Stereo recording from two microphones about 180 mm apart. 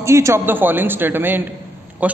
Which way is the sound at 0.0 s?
15° right (ahead or behind).